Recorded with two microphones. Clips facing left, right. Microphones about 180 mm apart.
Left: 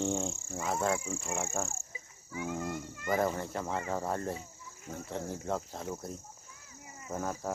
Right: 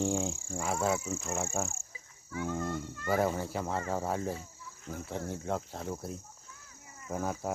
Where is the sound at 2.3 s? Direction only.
15° left (ahead or behind).